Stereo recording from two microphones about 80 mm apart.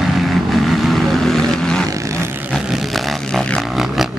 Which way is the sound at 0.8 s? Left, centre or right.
Centre.